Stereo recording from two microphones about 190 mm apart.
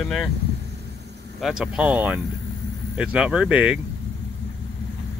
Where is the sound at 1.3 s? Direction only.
Centre (ahead or behind).